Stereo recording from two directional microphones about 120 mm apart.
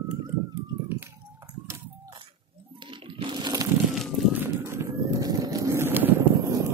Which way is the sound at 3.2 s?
40° right (ahead or behind).